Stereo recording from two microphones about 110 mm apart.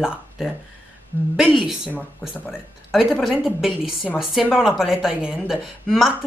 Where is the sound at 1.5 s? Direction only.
5° right (ahead or behind).